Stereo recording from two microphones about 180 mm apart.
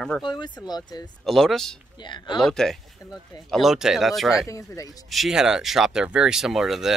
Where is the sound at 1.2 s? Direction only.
Centre (ahead or behind).